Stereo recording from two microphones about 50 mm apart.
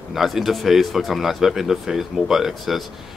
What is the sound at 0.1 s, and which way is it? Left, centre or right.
Speech, centre.